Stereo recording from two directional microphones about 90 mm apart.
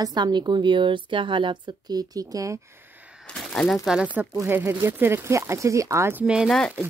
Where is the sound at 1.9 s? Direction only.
45° right (ahead or behind).